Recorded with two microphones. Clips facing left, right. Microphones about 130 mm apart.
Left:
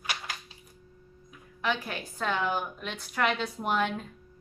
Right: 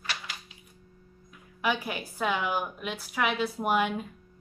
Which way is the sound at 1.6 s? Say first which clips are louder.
Right 2 dB; 10° right (ahead or behind).